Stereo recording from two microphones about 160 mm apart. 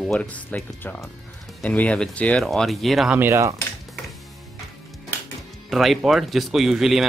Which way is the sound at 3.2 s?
15° right (ahead or behind).